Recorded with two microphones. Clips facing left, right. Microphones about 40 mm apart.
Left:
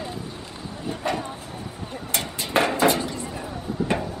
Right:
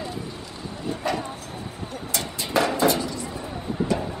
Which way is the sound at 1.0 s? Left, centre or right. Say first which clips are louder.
Even; centre.